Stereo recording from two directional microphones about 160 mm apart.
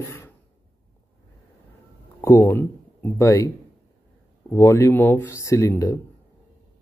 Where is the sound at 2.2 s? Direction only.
15° left (ahead or behind).